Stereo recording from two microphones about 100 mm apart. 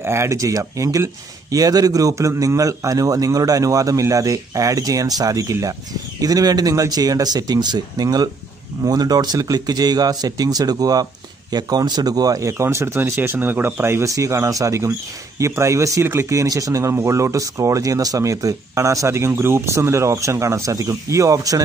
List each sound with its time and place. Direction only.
0.0 s speech: 25° right (ahead or behind)